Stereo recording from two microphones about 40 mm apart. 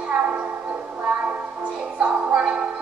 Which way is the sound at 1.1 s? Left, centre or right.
Centre.